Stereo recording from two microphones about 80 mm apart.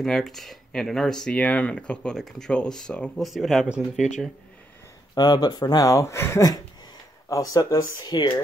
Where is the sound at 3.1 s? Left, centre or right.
Centre.